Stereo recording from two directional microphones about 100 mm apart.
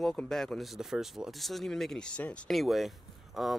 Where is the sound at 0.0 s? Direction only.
5° left (ahead or behind).